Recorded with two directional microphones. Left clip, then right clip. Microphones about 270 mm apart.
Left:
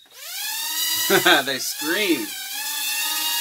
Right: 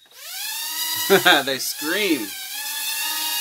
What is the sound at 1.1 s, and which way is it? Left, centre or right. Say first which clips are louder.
Speech: right 2 dB; right.